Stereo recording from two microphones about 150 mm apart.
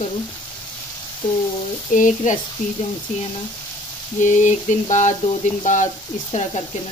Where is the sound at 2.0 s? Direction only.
60° left (ahead or behind).